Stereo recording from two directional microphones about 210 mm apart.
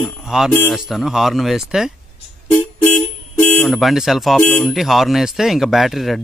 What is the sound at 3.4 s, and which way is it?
Speech, 5° left (ahead or behind).